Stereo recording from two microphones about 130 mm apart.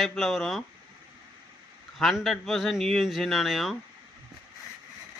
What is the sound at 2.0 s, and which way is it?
Speech, centre (ahead or behind).